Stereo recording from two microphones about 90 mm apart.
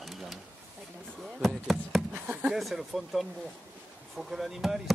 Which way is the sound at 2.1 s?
15° right (ahead or behind).